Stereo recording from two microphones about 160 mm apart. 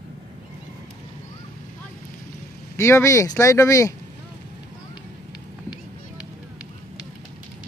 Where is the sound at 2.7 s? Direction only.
20° left (ahead or behind).